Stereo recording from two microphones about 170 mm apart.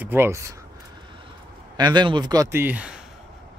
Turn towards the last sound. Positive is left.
turn(degrees=-5)  # may be behind; listen again after turning